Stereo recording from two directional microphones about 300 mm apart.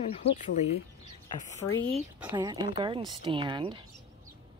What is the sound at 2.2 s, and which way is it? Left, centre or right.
Speech, centre.